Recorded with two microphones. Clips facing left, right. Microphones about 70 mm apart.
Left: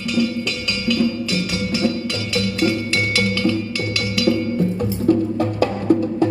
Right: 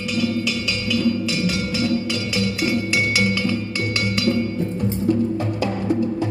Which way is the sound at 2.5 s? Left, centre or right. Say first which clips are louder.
Left 3 dB; centre.